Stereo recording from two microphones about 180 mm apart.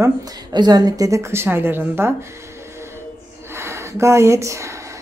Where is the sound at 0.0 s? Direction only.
25° right (ahead or behind).